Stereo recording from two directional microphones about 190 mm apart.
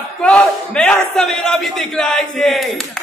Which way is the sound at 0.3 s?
5° left (ahead or behind).